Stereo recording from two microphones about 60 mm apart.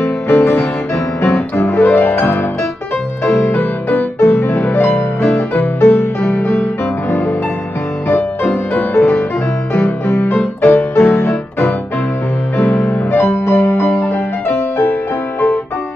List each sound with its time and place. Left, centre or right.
0.3 s music: left
3.3 s music: left
8.7 s music: left
10.6 s music: left
11.0 s music: left
13.1 s music: left